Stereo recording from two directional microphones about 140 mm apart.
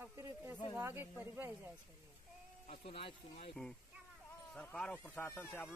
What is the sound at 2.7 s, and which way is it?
Speech, 45° left (ahead or behind).